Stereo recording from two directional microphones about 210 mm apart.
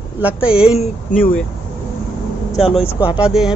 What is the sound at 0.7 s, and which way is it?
Speech, 40° left (ahead or behind).